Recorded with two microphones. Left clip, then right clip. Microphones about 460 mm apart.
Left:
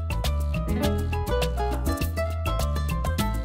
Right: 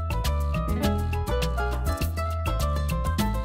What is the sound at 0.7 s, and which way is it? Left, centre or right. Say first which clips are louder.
Music: left 3 dB; left.